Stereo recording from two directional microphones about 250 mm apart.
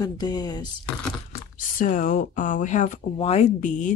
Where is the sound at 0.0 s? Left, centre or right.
Centre.